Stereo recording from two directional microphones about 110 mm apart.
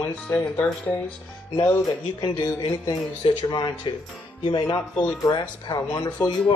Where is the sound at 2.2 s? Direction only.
45° left (ahead or behind).